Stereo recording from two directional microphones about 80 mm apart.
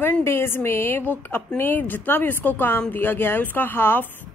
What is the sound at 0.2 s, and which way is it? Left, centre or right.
A woman's voice, left.